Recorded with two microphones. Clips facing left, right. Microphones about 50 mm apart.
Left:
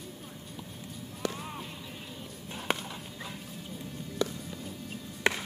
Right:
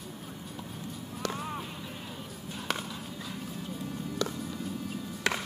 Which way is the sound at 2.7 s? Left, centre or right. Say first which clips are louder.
Left 2 dB; left.